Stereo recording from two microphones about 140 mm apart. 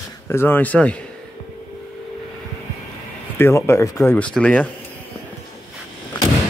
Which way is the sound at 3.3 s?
20° left (ahead or behind).